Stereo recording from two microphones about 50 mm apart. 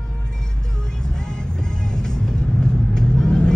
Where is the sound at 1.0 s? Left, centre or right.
Centre.